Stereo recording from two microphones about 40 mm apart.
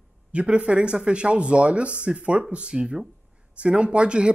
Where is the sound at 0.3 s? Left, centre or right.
Right.